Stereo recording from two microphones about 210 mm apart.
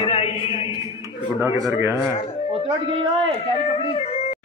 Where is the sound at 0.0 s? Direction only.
25° left (ahead or behind).